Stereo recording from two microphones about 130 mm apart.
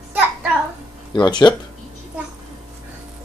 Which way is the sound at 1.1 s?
35° left (ahead or behind).